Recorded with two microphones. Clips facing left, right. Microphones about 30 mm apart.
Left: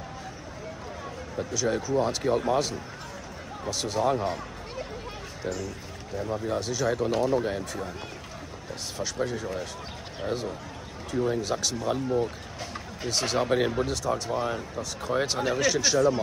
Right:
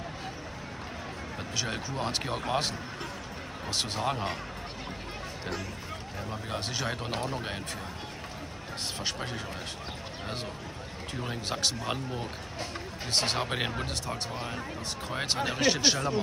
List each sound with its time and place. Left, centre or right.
1.5 s speech: right
3.7 s speech: right
6.4 s speech: right
8.9 s speech: right
11.2 s speech: right
14.0 s speech: right
15.3 s speech: right